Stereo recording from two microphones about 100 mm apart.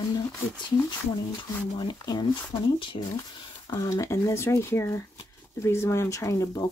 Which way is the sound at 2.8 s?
55° left (ahead or behind).